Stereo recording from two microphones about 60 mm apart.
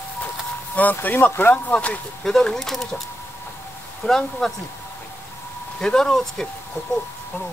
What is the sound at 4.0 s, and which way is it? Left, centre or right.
Speech, centre.